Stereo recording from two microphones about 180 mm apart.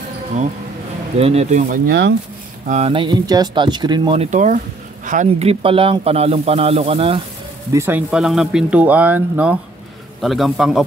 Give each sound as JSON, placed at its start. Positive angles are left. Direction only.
{"t": 1.2, "sound": "speech", "side_deg": -35}
{"t": 1.9, "sound": "speech", "side_deg": -65}
{"t": 2.6, "sound": "speech", "side_deg": -40}
{"t": 7.7, "sound": "a man's voice", "side_deg": -15}